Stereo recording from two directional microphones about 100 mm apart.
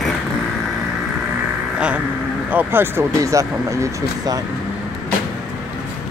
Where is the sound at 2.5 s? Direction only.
25° right (ahead or behind).